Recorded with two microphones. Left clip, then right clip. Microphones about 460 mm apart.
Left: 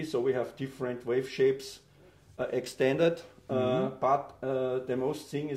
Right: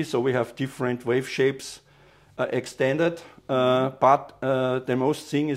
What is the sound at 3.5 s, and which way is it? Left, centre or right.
Speech, right.